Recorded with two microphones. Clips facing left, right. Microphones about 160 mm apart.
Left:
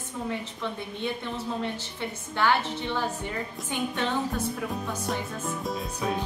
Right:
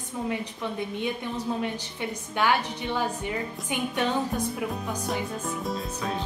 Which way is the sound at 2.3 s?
15° right (ahead or behind).